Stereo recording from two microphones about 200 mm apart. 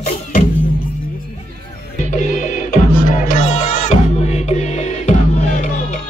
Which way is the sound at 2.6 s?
40° left (ahead or behind).